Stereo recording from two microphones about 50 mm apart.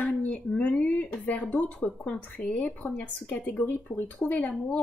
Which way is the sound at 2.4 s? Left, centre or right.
Left.